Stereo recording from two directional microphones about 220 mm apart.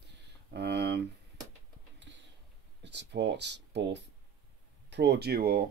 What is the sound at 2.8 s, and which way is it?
Speech, 50° right (ahead or behind).